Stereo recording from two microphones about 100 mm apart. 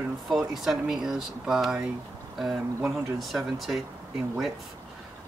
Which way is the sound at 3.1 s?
Centre (ahead or behind).